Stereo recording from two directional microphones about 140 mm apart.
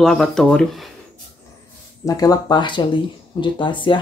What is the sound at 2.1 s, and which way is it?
Speech, 25° left (ahead or behind).